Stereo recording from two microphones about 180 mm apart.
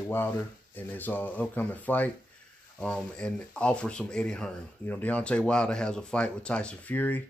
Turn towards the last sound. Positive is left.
turn(degrees=10)  # may be behind; listen again after turning